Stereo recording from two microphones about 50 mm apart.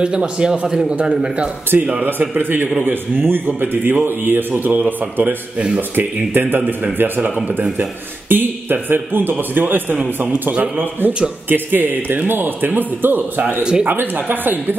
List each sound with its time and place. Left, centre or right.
0.0 s a man's voice: centre
1.7 s a man's voice: right
2.0 s a man's voice: right
8.3 s a sound: right
8.8 s a man's voice: right
9.9 s a man's voice: right
10.5 s a man's voice: right